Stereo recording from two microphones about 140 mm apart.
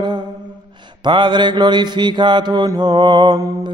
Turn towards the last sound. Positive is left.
turn(degrees=-30)  # may be behind; listen again after turning